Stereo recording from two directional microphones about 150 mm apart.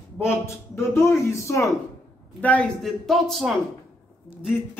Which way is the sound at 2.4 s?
5° left (ahead or behind).